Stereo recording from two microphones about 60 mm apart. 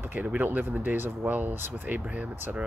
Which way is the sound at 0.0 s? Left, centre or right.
Right.